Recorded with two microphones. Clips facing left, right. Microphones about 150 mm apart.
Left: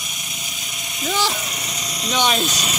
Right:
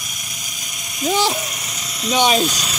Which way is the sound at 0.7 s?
30° left (ahead or behind).